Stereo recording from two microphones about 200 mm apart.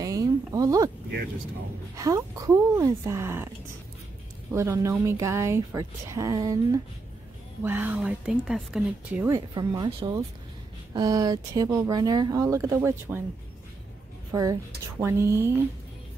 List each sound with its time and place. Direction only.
0.0 s a sound: 15° right (ahead or behind)
2.0 s speech: 15° right (ahead or behind)
4.6 s speech: 15° right (ahead or behind)
9.3 s speech: 20° right (ahead or behind)
14.3 s a woman's voice: 15° right (ahead or behind)